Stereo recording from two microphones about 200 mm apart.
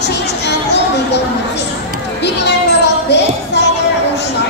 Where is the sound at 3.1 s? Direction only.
60° left (ahead or behind).